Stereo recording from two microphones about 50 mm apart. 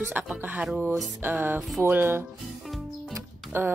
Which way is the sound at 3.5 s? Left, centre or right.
Right.